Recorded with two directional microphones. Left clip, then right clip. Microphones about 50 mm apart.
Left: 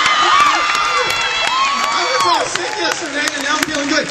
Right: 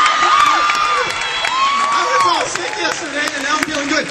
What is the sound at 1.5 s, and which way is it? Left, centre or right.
Crowd, centre.